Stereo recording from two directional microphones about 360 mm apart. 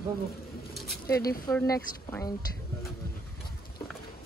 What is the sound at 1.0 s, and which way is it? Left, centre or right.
Speech, left.